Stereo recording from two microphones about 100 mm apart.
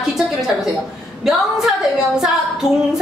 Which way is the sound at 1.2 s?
5° right (ahead or behind).